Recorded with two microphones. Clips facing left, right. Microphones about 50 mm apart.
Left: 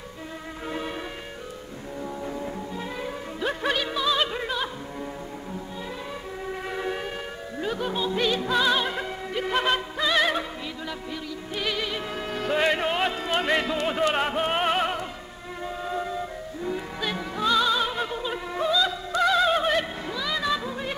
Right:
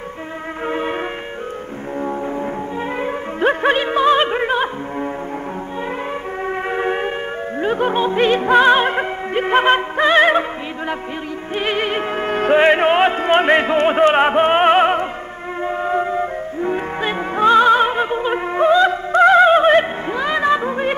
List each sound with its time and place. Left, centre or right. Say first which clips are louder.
0.7 s music: right 10 dB; right
2.0 s music: right 10 dB; right
6.4 s music: right 10 dB; right
11.5 s music: right 9 dB; right